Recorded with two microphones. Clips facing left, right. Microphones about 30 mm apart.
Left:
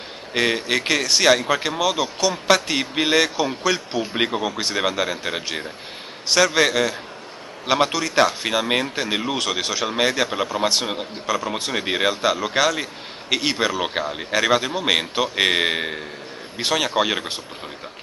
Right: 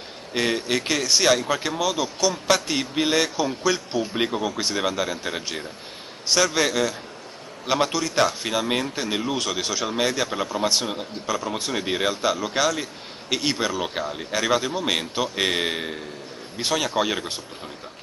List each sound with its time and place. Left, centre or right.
0.3 s speech: left